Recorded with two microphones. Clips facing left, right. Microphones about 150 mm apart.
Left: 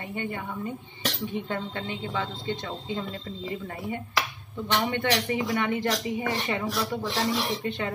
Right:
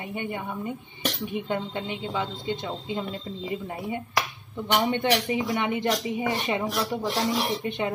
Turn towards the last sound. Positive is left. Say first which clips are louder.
# right 2 dB
turn(degrees=-20)  # may be behind; listen again after turning